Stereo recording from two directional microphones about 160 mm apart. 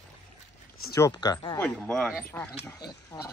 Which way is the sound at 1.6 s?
5° left (ahead or behind).